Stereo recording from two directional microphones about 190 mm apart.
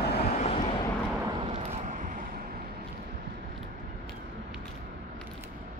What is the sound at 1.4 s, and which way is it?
Vehicle, 35° right (ahead or behind).